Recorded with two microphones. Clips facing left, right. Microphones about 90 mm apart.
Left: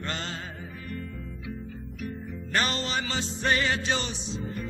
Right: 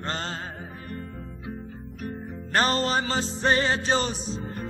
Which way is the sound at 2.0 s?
40° right (ahead or behind).